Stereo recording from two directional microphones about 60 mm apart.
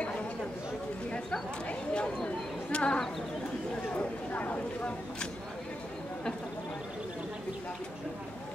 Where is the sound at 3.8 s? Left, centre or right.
Left.